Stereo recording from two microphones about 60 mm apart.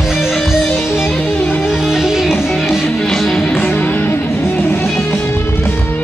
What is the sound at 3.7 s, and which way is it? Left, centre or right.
Music, left.